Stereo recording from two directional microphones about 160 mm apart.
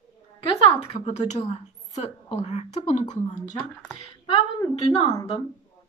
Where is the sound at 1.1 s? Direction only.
45° left (ahead or behind).